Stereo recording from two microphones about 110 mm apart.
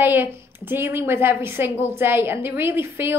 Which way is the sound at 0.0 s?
20° right (ahead or behind).